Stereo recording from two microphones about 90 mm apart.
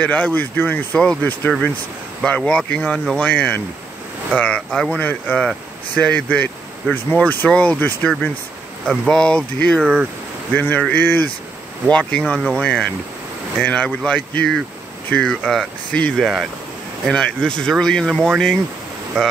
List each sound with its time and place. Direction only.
0.0 s speech: 15° left (ahead or behind)
9.8 s speech: 10° right (ahead or behind)
10.5 s speech: 20° left (ahead or behind)
16.2 s speech: 5° right (ahead or behind)
17.1 s speech: 5° left (ahead or behind)